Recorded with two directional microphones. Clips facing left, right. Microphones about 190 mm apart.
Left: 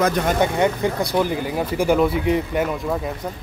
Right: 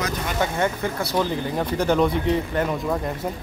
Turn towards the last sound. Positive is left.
turn(degrees=5)  # may be behind; listen again after turning